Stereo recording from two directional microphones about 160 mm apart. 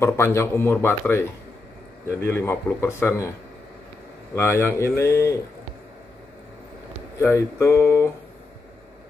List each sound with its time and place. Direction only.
0.0 s speech: 15° left (ahead or behind)
7.2 s speech: 15° left (ahead or behind)